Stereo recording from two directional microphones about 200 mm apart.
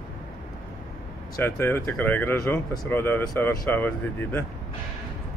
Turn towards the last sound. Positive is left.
turn(degrees=10)  # may be behind; listen again after turning